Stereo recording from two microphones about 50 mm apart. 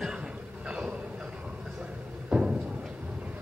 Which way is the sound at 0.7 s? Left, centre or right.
Centre.